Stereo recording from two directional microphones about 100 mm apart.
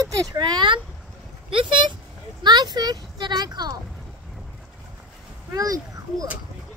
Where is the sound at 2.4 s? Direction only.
45° right (ahead or behind).